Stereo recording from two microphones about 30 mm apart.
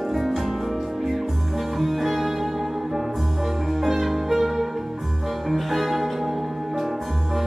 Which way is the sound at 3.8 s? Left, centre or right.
Centre.